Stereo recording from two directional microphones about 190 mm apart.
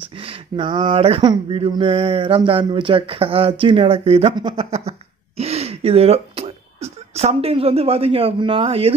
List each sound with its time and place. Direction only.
0.1 s speech: 30° right (ahead or behind)